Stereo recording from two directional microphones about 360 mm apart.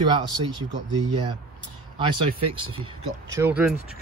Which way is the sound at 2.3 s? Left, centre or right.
Centre.